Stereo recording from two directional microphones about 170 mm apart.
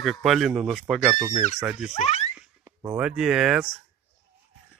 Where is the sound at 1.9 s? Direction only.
40° left (ahead or behind).